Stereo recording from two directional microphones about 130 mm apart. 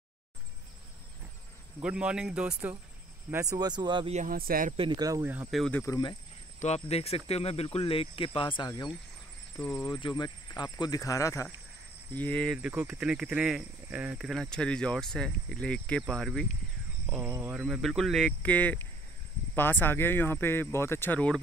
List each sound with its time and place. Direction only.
1.8 s speech: 10° right (ahead or behind)
3.3 s speech: 20° right (ahead or behind)
3.5 s speech: 30° right (ahead or behind)
4.1 s speech: 80° right
4.7 s speech: 35° right (ahead or behind)
5.2 s speech: 15° right (ahead or behind)
5.9 s speech: 30° left (ahead or behind)
6.6 s speech: 55° left (ahead or behind); by 8.9 s 35° left (ahead or behind)
9.6 s speech: 15° left (ahead or behind)
9.8 s speech: 35° left (ahead or behind)
12.1 s speech: 15° left (ahead or behind)
12.6 s speech: 10° right (ahead or behind)
17.3 s speech: 10° right (ahead or behind); by 21.4 s 10° left (ahead or behind)